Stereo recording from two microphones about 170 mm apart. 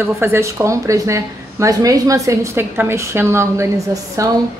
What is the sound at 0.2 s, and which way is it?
A woman's voice, 15° right (ahead or behind).